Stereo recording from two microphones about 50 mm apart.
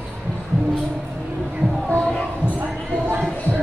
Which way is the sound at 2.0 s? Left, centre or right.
Left.